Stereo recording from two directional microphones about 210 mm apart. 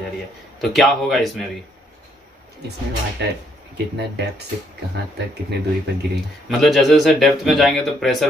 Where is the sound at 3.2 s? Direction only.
55° right (ahead or behind).